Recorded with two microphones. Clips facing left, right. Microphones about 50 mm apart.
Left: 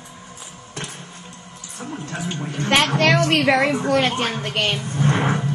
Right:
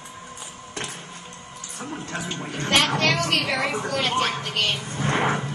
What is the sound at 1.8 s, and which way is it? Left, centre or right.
Speech, centre.